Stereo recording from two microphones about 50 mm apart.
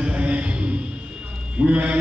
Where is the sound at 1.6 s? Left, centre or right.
Right.